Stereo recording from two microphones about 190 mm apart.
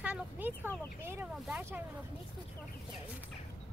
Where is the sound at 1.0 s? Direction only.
10° right (ahead or behind).